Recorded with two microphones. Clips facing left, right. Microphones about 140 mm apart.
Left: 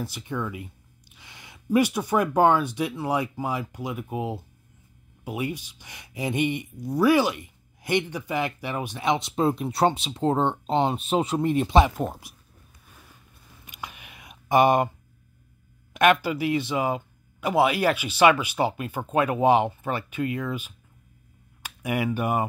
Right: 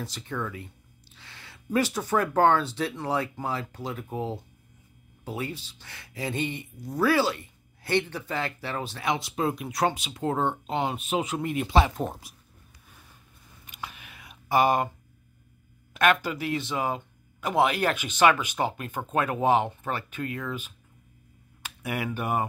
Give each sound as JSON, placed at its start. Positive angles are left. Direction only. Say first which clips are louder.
{"t": 0.0, "sound": "speech", "louder": "left 3 dB", "side_deg": 10}
{"t": 11.6, "sound": "speech", "louder": "left 3 dB", "side_deg": 20}
{"t": 12.0, "sound": "speech", "louder": "left 2 dB", "side_deg": 5}
{"t": 13.7, "sound": "a sound", "louder": "left 1 dB", "side_deg": 15}
{"t": 15.9, "sound": "speech", "louder": "left 3 dB", "side_deg": 15}